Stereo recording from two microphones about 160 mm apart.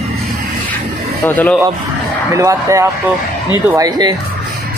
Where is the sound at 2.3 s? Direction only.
20° right (ahead or behind).